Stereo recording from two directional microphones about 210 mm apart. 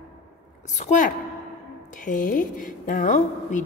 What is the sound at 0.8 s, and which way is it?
A woman's voice, 40° left (ahead or behind).